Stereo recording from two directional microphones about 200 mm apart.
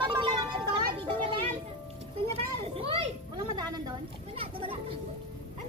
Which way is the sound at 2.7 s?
30° right (ahead or behind).